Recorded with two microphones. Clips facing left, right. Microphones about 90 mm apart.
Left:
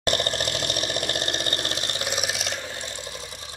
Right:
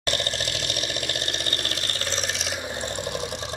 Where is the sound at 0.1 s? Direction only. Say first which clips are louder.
Left 3 dB; 45° left (ahead or behind); by 2.6 s centre (ahead or behind).